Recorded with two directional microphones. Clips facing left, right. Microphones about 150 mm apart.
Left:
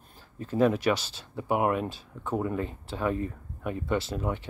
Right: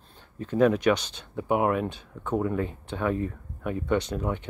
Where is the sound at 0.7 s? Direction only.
5° left (ahead or behind).